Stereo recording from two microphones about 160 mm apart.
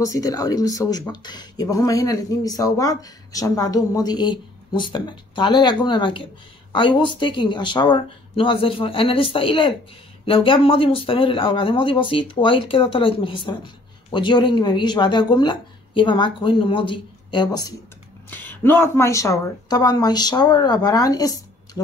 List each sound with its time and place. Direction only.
0.0 s speech: 20° left (ahead or behind)
18.3 s speech: 10° left (ahead or behind)